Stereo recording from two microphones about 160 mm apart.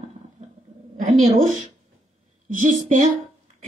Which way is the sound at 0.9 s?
50° right (ahead or behind).